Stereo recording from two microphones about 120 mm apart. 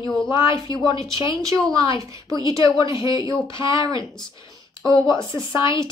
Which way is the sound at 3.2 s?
40° left (ahead or behind).